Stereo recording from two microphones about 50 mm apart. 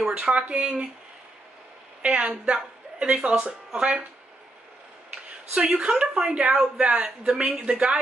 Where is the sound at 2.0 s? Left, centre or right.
Right.